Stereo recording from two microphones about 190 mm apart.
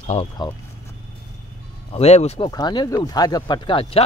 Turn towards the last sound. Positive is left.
turn(degrees=30)  # may be behind; listen again after turning